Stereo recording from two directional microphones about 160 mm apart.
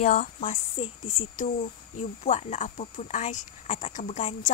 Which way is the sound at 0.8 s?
35° left (ahead or behind).